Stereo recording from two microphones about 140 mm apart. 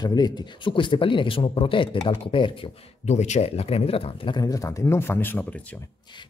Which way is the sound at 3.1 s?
55° left (ahead or behind).